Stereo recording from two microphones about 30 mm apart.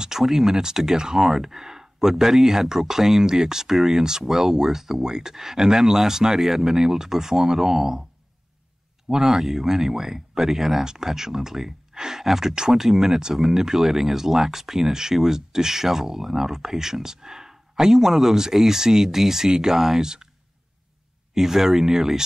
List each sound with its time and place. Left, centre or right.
0.2 s speech: centre
9.1 s speech: centre
21.4 s speech: centre